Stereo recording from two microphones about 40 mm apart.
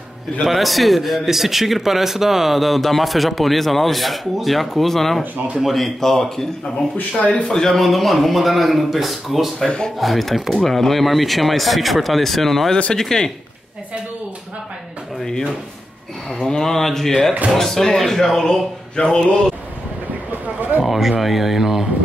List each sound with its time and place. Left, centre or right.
0.5 s speech: centre
7.2 s speech: left
7.4 s speech: centre
9.7 s speech: centre
9.9 s speech: centre
16.4 s speech: centre
20.2 s roaring cats: right
20.8 s speech: centre